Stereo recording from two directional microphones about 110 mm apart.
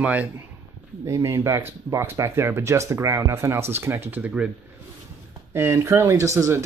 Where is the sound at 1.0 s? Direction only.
25° right (ahead or behind).